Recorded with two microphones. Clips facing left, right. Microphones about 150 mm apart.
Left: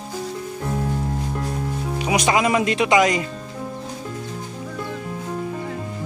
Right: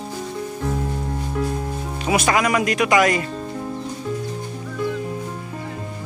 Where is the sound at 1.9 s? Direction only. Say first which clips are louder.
Even; 15° left (ahead or behind).